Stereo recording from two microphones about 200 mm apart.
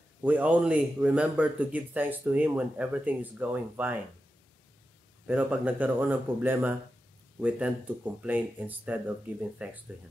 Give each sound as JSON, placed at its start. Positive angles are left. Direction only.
{"t": 0.2, "sound": "a man's voice", "side_deg": -10}
{"t": 5.2, "sound": "a man's voice", "side_deg": -10}